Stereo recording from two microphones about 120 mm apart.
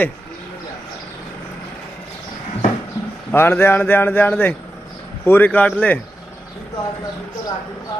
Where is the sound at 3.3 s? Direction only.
20° left (ahead or behind).